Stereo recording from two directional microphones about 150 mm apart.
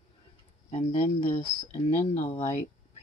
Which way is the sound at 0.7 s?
40° left (ahead or behind).